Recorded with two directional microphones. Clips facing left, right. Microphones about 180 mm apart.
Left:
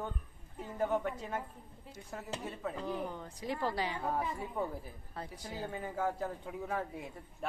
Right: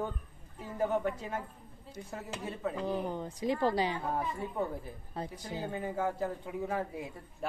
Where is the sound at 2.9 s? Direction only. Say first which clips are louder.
Right 4 dB; 20° right (ahead or behind).